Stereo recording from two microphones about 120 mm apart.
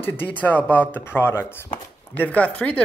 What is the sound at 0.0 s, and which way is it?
Speech, 15° left (ahead or behind).